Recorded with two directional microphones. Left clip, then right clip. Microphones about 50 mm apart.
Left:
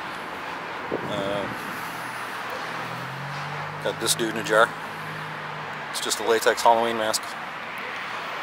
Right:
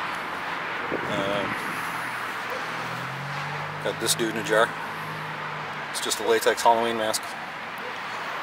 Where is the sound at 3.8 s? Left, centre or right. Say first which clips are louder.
Left 1 dB; centre.